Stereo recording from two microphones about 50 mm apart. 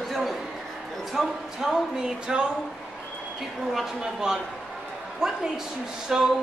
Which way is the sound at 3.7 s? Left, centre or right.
Centre.